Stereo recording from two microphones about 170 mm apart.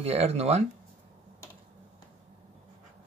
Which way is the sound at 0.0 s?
35° right (ahead or behind).